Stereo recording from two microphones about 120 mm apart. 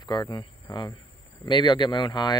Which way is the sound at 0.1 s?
35° left (ahead or behind).